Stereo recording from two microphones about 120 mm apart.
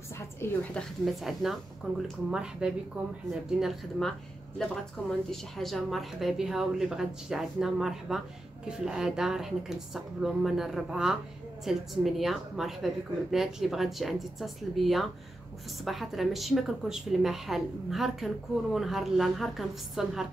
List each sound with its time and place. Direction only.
0.1 s a sound: 20° left (ahead or behind)
0.7 s a woman's voice: centre (ahead or behind)
3.3 s a woman's voice: 5° right (ahead or behind)